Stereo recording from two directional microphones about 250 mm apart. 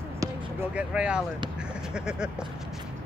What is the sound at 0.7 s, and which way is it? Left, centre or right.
Speech, centre.